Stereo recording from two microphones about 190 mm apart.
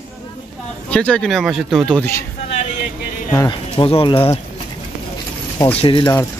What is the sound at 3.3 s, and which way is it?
Speech, 25° left (ahead or behind).